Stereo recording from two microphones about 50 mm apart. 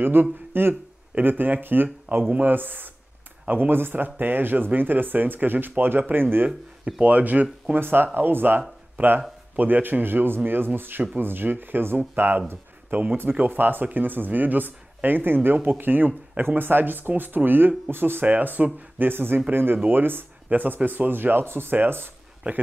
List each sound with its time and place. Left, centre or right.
0.0 s speech: right
1.1 s speech: right
7.0 s speech: right
7.7 s speech: right
18.2 s speech: right